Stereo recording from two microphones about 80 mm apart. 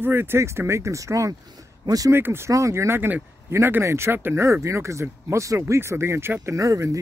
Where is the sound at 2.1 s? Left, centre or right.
Right.